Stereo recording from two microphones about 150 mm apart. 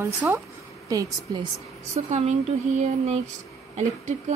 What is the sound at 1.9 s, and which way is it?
Speech, 50° right (ahead or behind).